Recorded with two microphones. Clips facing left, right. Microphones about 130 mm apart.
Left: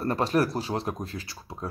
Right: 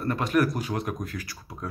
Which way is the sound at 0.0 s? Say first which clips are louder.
Even; 35° left (ahead or behind).